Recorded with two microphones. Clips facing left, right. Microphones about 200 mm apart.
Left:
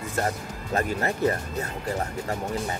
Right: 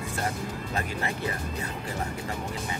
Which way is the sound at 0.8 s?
45° left (ahead or behind).